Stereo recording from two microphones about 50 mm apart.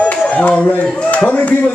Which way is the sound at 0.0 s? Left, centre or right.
Left.